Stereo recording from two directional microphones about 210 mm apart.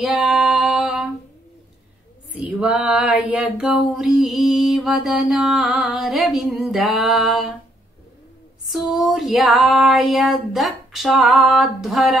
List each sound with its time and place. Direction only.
0.0 s female singing: centre (ahead or behind)
2.3 s female singing: 5° right (ahead or behind)
8.6 s female singing: centre (ahead or behind)